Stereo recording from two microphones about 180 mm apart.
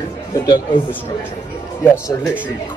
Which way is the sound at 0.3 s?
25° left (ahead or behind).